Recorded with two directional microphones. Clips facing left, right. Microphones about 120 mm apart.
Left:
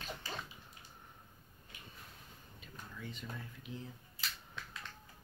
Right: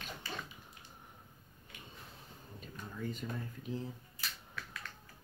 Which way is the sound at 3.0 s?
45° right (ahead or behind).